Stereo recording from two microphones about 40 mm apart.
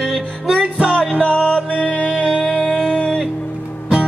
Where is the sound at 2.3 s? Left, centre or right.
Centre.